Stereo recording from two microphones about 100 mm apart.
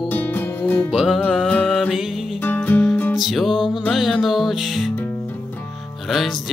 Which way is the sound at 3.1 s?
Centre (ahead or behind).